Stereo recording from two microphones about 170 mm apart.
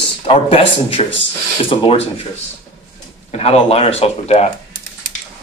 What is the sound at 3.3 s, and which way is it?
A man's voice, 35° left (ahead or behind).